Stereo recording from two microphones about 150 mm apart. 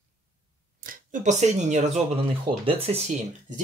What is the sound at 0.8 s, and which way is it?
Speech, 55° right (ahead or behind).